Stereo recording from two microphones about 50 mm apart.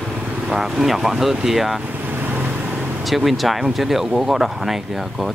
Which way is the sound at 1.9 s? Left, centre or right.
Right.